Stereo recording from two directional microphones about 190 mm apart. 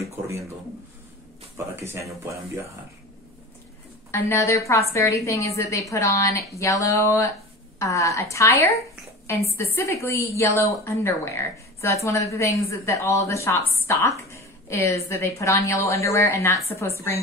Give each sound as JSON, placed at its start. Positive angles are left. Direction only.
{"t": 1.8, "sound": "speech", "side_deg": -15}
{"t": 4.1, "sound": "a woman's voice", "side_deg": 15}